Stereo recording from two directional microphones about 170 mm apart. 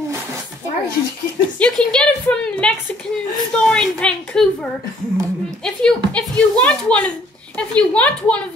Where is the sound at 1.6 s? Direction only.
5° left (ahead or behind).